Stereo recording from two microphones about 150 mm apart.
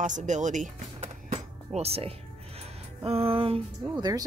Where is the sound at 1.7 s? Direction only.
40° right (ahead or behind).